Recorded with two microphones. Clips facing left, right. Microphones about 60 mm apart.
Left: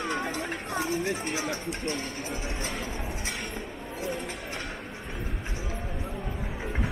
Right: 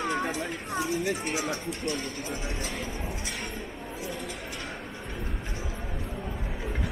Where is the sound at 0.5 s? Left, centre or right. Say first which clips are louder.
Even; left.